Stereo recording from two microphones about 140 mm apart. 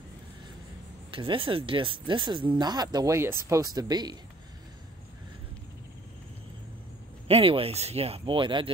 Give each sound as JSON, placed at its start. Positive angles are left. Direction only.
{"t": 1.1, "sound": "speech", "side_deg": -40}
{"t": 7.2, "sound": "speech", "side_deg": -40}